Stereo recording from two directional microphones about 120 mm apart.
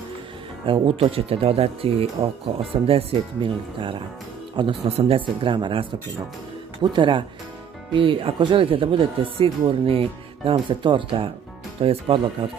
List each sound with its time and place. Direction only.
0.7 s speech: 50° right (ahead or behind)